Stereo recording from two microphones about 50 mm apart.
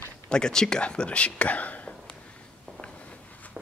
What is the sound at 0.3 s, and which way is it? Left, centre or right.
Speech, centre.